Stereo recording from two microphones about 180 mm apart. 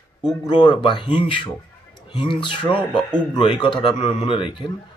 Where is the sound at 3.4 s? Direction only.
25° left (ahead or behind).